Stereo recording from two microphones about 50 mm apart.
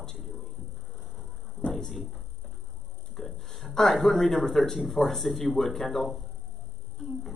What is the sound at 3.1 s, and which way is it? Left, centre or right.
A man's voice, centre.